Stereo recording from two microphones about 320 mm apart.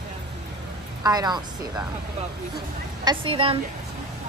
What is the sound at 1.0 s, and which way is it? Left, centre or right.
Speech, centre.